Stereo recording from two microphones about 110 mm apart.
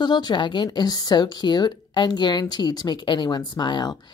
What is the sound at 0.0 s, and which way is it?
A woman's voice, 40° left (ahead or behind).